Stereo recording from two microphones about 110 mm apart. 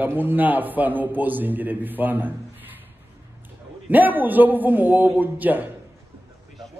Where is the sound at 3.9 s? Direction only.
15° right (ahead or behind).